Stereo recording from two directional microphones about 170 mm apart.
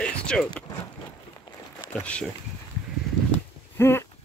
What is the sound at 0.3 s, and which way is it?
Speech, 5° left (ahead or behind).